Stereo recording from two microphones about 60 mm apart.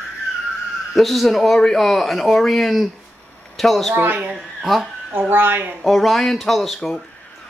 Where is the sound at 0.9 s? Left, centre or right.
Centre.